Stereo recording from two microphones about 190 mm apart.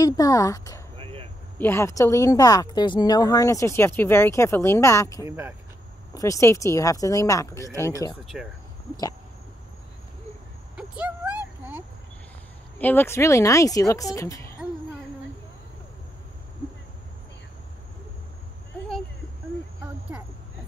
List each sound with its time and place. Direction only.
0.0 s speech: 20° left (ahead or behind)
0.9 s a sound: 30° right (ahead or behind)
1.6 s speech: 15° left (ahead or behind)
5.2 s speech: 10° right (ahead or behind)
6.1 s speech: 15° left (ahead or behind)
12.7 s speech: 10° left (ahead or behind)